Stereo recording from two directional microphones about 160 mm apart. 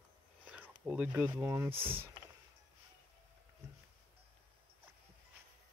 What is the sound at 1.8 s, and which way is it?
Speech, 35° right (ahead or behind).